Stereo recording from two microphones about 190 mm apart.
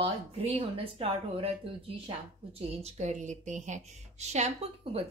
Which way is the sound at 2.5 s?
35° right (ahead or behind).